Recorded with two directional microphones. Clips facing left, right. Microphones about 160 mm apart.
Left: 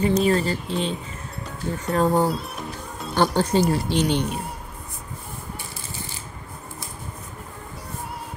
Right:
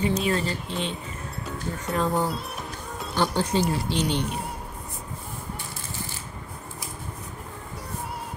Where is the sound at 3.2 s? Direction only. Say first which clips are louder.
Left 4 dB; 50° left (ahead or behind).